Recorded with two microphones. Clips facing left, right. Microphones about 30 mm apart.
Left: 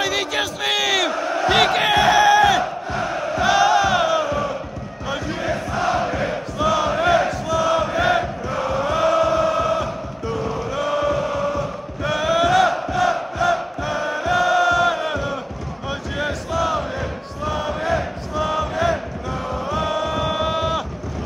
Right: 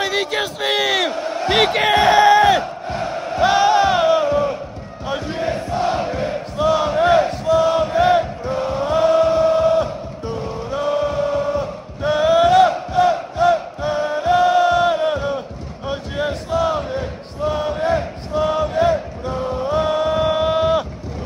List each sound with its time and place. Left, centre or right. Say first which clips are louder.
0.0 s battle cry: right 1 dB; centre
1.5 s crowd: right 2 dB; centre
5.0 s chant: right 2 dB; right
6.2 s battle cry: right 2 dB; right
7.1 s crowd: right 5 dB; right
8.5 s chant: right 2 dB; right
12.0 s crowd: right 5 dB; right
16.3 s crowd: right 3 dB; right
17.4 s chant: right 4 dB; right
19.4 s music: right 5 dB; centre